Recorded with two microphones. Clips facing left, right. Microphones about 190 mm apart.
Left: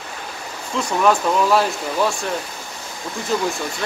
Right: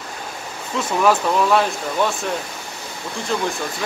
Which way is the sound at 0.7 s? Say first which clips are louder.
Even; 5° right (ahead or behind).